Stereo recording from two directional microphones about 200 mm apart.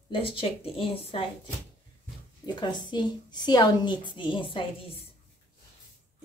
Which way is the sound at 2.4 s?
20° left (ahead or behind).